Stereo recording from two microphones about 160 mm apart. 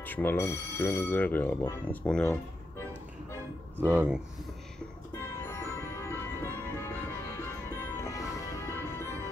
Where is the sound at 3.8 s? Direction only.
10° right (ahead or behind).